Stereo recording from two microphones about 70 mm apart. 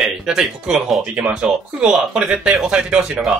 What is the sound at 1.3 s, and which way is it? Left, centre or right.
Speech, centre.